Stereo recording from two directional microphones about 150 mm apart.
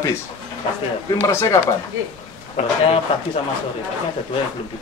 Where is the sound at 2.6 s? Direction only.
55° left (ahead or behind).